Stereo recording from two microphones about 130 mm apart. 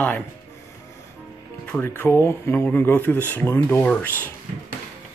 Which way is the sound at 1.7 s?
15° left (ahead or behind).